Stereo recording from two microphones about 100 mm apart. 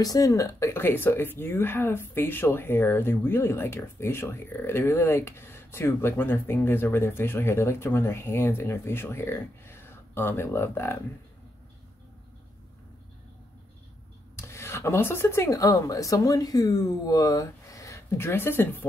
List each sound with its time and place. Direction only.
0.0 s speech: 35° left (ahead or behind)
14.3 s speech: 25° left (ahead or behind)